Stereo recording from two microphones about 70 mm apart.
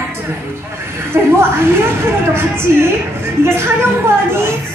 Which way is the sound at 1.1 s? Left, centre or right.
Right.